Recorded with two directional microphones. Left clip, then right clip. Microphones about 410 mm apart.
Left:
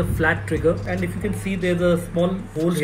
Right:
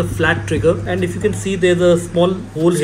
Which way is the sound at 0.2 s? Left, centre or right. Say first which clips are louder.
Right 4 dB; centre.